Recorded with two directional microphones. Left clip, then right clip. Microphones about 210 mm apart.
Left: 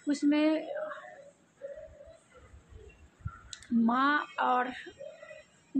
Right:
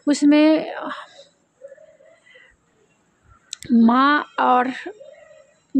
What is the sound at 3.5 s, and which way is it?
Speech, 50° right (ahead or behind).